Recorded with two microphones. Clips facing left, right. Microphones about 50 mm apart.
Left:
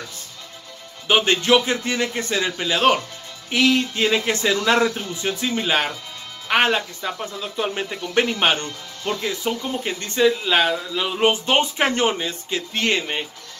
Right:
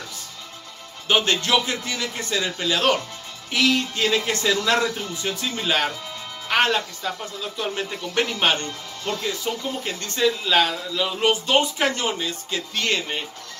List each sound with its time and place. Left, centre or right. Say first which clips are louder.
1.0 s speech: left 3 dB; centre